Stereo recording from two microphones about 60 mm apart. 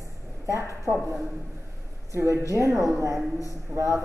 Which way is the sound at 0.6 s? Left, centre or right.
Right.